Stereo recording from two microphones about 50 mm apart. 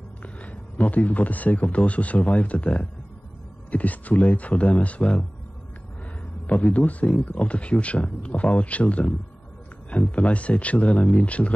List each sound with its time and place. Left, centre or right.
0.2 s a sound: left
1.6 s speech: left
6.4 s speech: left